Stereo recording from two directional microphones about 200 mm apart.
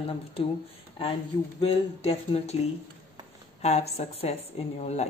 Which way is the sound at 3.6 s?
30° left (ahead or behind).